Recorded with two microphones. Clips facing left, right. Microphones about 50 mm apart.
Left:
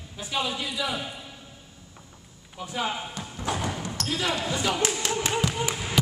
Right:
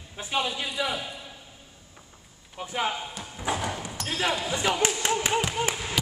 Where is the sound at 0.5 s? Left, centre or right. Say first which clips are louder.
Even; right.